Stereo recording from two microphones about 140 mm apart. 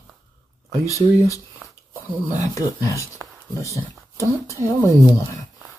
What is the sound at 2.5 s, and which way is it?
Speech, 25° left (ahead or behind).